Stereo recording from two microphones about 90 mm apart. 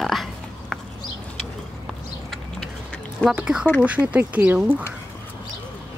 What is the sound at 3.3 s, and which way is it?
Speech, 10° right (ahead or behind).